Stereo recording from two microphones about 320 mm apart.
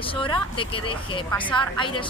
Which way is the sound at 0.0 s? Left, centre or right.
Centre.